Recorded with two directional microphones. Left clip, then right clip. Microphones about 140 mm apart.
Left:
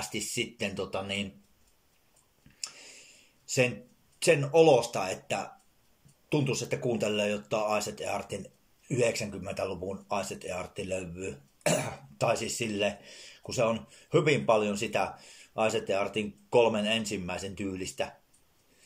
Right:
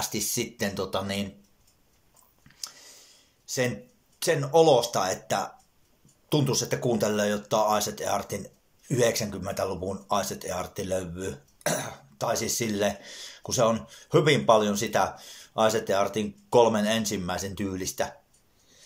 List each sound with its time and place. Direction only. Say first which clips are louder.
0.3 s speech: right 3 dB; 15° left (ahead or behind)
2.6 s a sound: right 1 dB; 15° left (ahead or behind)
4.2 s speech: right 1 dB; 15° left (ahead or behind)